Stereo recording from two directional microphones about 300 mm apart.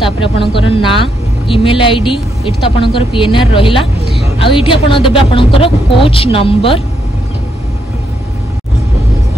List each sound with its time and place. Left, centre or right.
0.0 s a woman's voice: centre